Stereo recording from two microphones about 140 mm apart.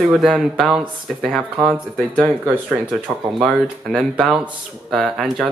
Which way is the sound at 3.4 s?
Centre (ahead or behind).